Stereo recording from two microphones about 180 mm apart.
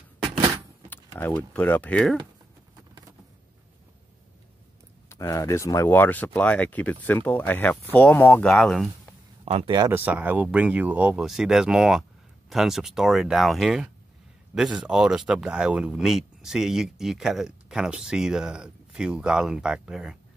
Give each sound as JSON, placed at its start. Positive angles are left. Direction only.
{"t": 0.8, "sound": "speech", "side_deg": 10}
{"t": 5.1, "sound": "speech", "side_deg": 15}
{"t": 9.4, "sound": "speech", "side_deg": -35}
{"t": 9.8, "sound": "speech", "side_deg": -10}